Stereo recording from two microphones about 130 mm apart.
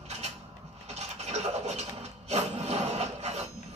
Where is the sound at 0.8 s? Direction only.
60° right (ahead or behind).